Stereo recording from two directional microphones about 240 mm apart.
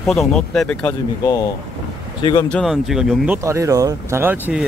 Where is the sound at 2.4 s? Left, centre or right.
Centre.